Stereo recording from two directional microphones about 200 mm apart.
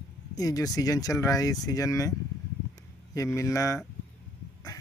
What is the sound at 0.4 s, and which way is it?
Speech, 15° left (ahead or behind).